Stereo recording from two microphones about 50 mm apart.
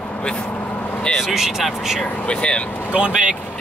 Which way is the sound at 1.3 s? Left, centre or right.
Centre.